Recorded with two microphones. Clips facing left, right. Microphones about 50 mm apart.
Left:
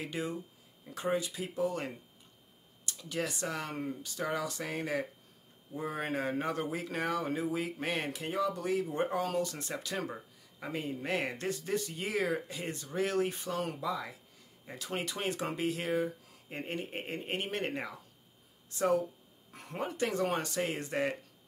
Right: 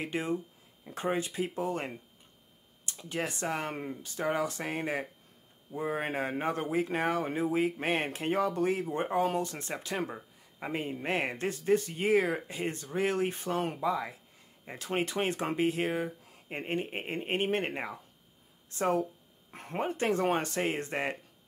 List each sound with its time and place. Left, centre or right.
0.0 s speech: right